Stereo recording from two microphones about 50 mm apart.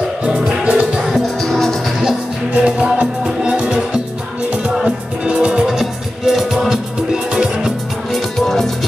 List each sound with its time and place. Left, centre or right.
0.2 s music: right
1.1 s music: centre
2.5 s music: right
5.7 s music: centre
8.1 s music: centre